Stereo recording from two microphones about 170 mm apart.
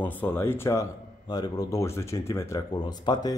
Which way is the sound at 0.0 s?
10° left (ahead or behind).